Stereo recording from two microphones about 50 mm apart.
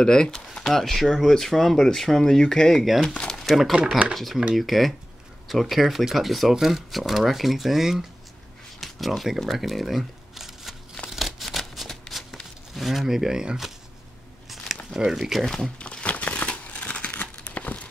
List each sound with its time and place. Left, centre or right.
0.0 s speech: centre
0.7 s speech: centre
3.4 s speech: centre
8.7 s a sound: centre
9.5 s shuffling cards: centre
11.1 s a sound: centre
12.1 s shuffling cards: centre
12.7 s speech: centre
15.0 s speech: centre
15.4 s speech: centre
15.8 s crumpling: left